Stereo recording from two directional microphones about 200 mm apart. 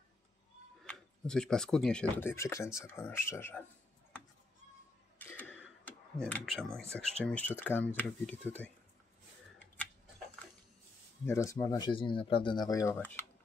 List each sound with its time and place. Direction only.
0.8 s speech: 5° left (ahead or behind)
5.2 s speech: 10° left (ahead or behind)
11.2 s speech: 15° left (ahead or behind)